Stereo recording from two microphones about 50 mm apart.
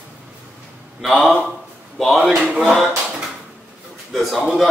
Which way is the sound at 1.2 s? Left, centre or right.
Centre.